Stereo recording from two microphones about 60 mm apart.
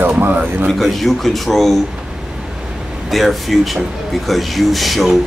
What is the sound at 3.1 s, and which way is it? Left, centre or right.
Speech, centre.